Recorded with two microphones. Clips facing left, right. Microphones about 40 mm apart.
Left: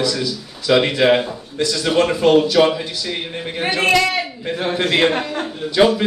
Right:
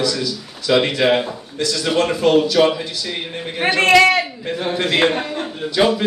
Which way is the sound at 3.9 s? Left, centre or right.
Right.